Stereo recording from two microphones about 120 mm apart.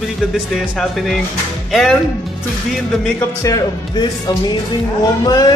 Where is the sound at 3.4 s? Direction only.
35° left (ahead or behind).